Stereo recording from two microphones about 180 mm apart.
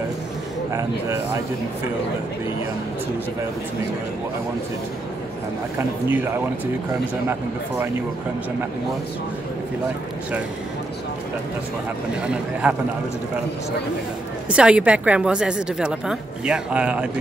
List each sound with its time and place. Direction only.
12.6 s a woman's voice: 5° right (ahead or behind)
14.5 s a woman's voice: 5° right (ahead or behind)